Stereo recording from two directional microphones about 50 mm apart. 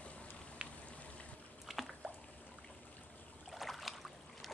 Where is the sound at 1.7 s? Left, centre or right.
Centre.